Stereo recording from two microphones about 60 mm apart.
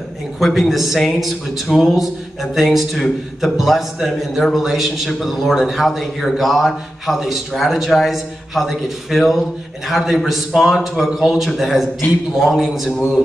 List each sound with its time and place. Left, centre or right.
0.4 s a man's voice: centre